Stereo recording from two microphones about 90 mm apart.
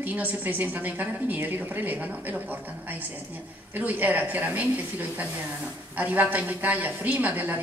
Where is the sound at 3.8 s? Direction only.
15° right (ahead or behind).